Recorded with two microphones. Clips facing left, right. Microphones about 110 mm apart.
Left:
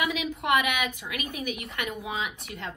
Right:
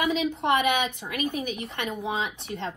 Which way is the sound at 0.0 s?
30° right (ahead or behind).